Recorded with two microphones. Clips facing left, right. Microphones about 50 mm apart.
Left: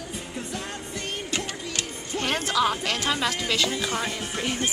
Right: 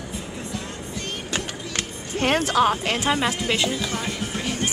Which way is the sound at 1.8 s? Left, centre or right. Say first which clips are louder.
Right 5 dB; right.